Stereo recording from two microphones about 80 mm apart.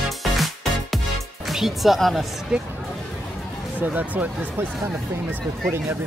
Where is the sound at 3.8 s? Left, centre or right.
Right.